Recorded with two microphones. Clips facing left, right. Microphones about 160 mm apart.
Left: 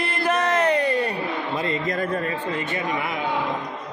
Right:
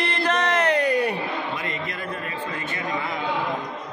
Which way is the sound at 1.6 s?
40° left (ahead or behind).